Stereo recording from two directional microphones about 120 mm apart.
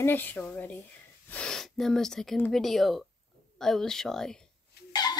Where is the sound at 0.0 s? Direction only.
15° left (ahead or behind).